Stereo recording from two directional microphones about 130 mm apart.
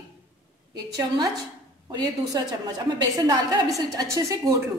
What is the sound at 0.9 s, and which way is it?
A woman's voice, 30° right (ahead or behind).